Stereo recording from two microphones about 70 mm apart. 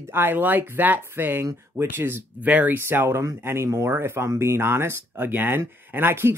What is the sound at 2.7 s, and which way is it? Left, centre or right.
Speech, right.